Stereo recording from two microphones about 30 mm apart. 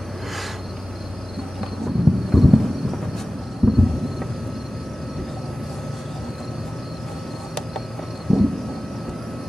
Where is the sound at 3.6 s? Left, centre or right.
Centre.